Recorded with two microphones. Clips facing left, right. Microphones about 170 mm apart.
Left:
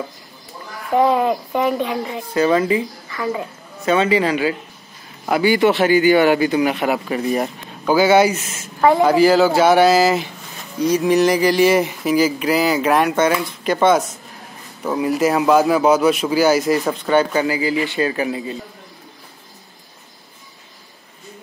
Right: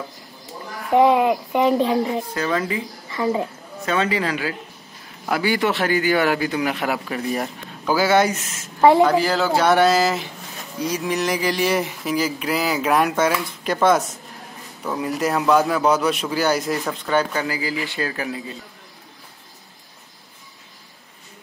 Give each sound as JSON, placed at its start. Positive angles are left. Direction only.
{"t": 0.8, "sound": "speech", "side_deg": -20}
{"t": 2.3, "sound": "speech", "side_deg": 0}
{"t": 3.1, "sound": "a woman's voice", "side_deg": -25}
{"t": 3.8, "sound": "speech", "side_deg": 5}